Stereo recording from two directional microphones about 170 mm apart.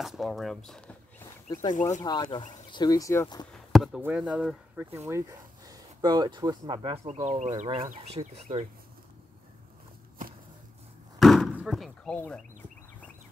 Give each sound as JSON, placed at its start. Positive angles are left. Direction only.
{"t": 0.0, "sound": "speech", "side_deg": 0}
{"t": 1.7, "sound": "speech", "side_deg": 45}
{"t": 2.0, "sound": "speech", "side_deg": 25}
{"t": 3.5, "sound": "chop", "side_deg": 0}
{"t": 4.0, "sound": "speech", "side_deg": -5}
{"t": 4.7, "sound": "speech", "side_deg": -15}
{"t": 7.2, "sound": "speech", "side_deg": -45}
{"t": 11.1, "sound": "a sound", "side_deg": 0}
{"t": 11.5, "sound": "speech", "side_deg": 0}